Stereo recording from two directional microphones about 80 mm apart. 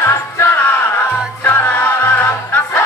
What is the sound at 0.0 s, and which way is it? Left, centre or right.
Music, left.